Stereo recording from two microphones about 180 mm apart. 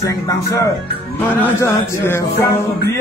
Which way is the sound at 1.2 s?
10° left (ahead or behind).